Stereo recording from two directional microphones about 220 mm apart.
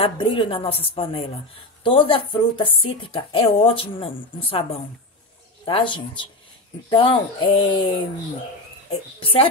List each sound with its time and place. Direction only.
0.0 s speech: 25° left (ahead or behind)
5.7 s speech: 25° left (ahead or behind)
8.9 s speech: 25° left (ahead or behind)